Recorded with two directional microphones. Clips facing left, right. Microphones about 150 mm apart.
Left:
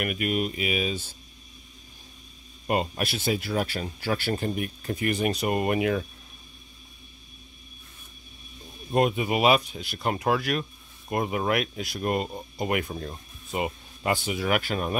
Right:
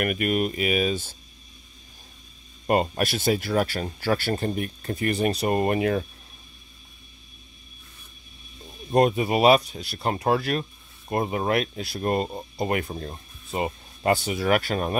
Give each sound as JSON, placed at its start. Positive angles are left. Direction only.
{"t": 0.0, "sound": "speech", "side_deg": -50}
{"t": 2.6, "sound": "speech", "side_deg": -40}
{"t": 8.9, "sound": "speech", "side_deg": -40}